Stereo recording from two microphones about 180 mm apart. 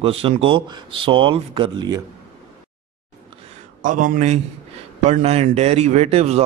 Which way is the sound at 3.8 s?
45° right (ahead or behind).